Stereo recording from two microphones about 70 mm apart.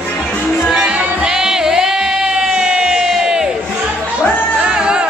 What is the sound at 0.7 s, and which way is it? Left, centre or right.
Music, centre.